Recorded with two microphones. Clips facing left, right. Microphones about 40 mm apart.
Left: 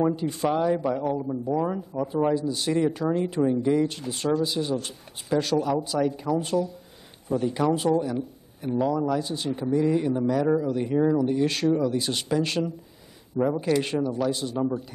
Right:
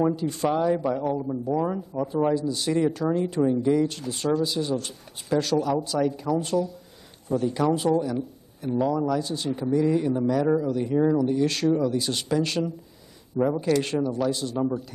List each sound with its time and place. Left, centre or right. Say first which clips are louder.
0.1 s speech: even; centre
4.1 s speech: even; centre
7.7 s speech: even; centre
9.0 s speech: even; centre
10.7 s speech: even; centre